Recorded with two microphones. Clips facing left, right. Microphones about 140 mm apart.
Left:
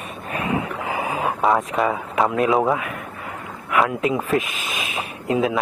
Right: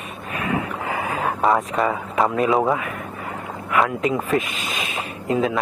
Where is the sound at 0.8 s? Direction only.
20° left (ahead or behind).